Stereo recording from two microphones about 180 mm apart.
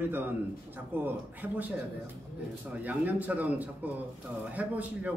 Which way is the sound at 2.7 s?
10° right (ahead or behind).